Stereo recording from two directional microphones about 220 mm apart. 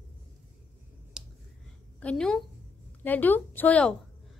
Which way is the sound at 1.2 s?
5° right (ahead or behind).